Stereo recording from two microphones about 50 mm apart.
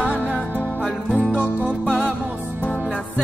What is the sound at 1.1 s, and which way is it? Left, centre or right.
Music, right.